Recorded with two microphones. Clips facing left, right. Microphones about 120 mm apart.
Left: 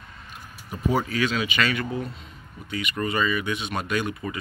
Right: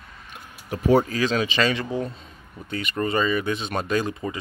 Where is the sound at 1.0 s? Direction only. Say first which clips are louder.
Right 2 dB; 35° right (ahead or behind).